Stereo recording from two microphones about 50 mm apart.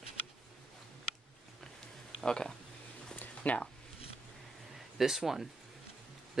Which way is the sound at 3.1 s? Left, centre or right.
Left.